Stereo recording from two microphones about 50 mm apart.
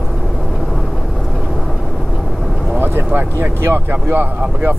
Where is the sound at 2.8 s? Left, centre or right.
Right.